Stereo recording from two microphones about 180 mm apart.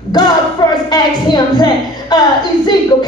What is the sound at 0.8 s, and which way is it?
A woman's voice, 20° left (ahead or behind).